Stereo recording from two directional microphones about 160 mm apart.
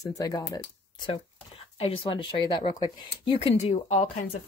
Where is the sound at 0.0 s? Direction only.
20° left (ahead or behind).